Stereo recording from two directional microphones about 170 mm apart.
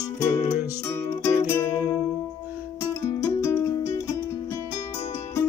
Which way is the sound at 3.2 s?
15° left (ahead or behind).